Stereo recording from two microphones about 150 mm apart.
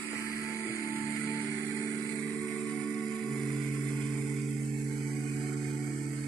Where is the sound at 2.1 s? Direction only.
10° left (ahead or behind).